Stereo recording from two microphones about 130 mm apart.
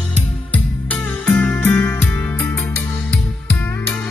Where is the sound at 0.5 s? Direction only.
10° left (ahead or behind).